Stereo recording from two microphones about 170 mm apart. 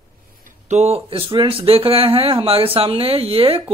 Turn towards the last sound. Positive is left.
turn(degrees=-35)  # may be behind; listen again after turning